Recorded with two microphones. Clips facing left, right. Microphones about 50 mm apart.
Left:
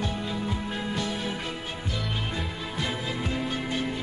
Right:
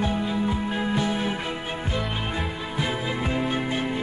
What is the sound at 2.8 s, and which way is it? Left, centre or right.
Music, right.